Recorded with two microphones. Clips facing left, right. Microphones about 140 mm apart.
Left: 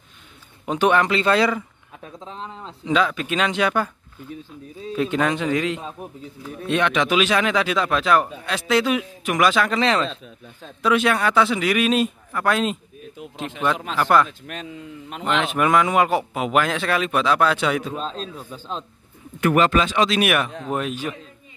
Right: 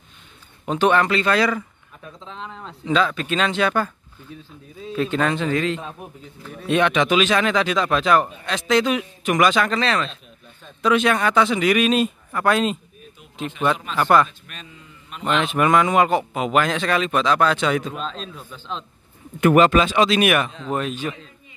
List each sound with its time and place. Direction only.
0.7 s speech: 10° left (ahead or behind)
2.1 s a man's voice: 40° left (ahead or behind)
2.9 s speech: 10° left (ahead or behind)
4.9 s speech: 10° left (ahead or behind)
6.7 s a man's voice: centre (ahead or behind)
9.8 s speech: 20° left (ahead or behind)
10.8 s a man's voice: 5° left (ahead or behind)
13.9 s a man's voice: centre (ahead or behind)
14.4 s a man's voice: 80° left
15.4 s a man's voice: centre (ahead or behind)
17.9 s a man's voice: 35° left (ahead or behind)
19.4 s a man's voice: 20° right (ahead or behind); by 21.2 s 10° left (ahead or behind)